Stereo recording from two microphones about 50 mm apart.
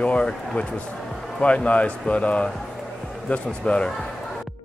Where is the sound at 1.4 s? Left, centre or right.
Left.